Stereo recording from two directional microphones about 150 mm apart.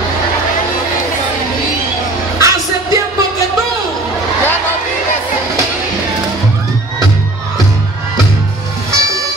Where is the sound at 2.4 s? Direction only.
25° right (ahead or behind).